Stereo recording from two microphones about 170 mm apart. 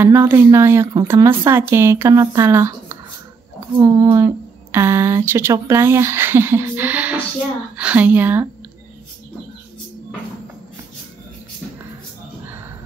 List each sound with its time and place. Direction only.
0.0 s speech: 15° right (ahead or behind)